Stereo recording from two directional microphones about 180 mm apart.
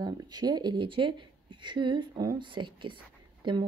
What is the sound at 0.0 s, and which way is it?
Speech, 25° right (ahead or behind).